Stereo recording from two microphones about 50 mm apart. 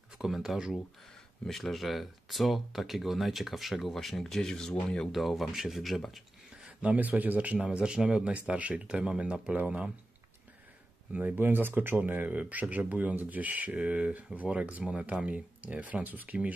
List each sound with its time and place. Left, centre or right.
0.2 s speech: centre
1.5 s speech: centre
5.1 s speech: centre
6.6 s speech: right
7.6 s speech: centre
11.1 s speech: right